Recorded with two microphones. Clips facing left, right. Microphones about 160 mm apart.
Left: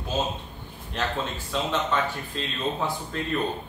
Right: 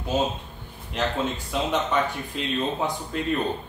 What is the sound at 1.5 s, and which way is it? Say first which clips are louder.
Speech: even; 15° right (ahead or behind).